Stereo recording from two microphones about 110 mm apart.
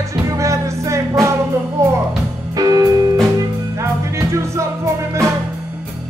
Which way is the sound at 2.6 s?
35° right (ahead or behind).